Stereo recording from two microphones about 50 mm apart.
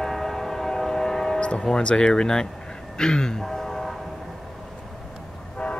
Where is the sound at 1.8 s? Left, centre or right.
Centre.